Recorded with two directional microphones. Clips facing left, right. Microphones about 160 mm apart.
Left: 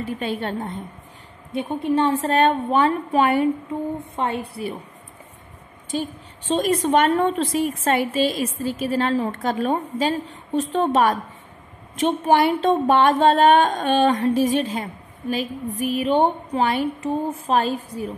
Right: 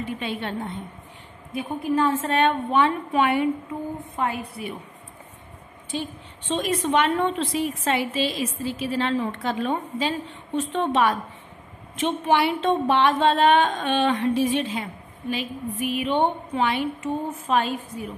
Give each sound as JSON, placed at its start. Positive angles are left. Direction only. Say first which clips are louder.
{"t": 0.2, "sound": "a woman's voice", "louder": "left 3 dB", "side_deg": 40}
{"t": 1.5, "sound": "a woman's voice", "louder": "left 3 dB", "side_deg": 25}
{"t": 5.9, "sound": "a woman's voice", "louder": "left 4 dB", "side_deg": 40}